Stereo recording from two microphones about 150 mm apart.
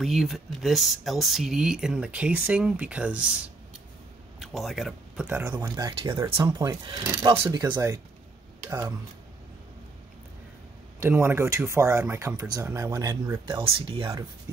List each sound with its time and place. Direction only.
0.0 s speech: centre (ahead or behind)
4.4 s speech: centre (ahead or behind)
5.2 s speech: 15° right (ahead or behind)
5.6 s speech: 25° right (ahead or behind)
11.0 s speech: 15° right (ahead or behind); by 14.0 s 35° right (ahead or behind)